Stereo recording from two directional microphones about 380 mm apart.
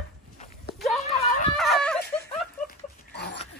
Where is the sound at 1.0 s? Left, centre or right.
Centre.